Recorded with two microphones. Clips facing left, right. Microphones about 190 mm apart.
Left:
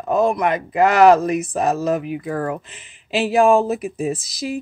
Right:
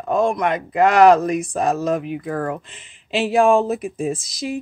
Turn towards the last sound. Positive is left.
turn(degrees=0)  # may be behind; listen again after turning